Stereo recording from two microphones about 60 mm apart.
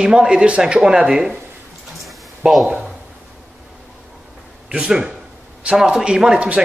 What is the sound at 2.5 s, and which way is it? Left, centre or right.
Speech, centre.